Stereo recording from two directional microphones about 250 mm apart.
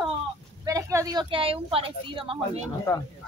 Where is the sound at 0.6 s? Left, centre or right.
Centre.